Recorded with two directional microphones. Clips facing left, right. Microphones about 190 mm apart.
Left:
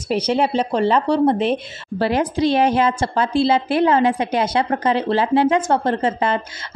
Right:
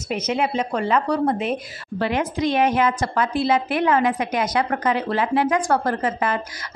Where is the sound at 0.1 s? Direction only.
30° left (ahead or behind).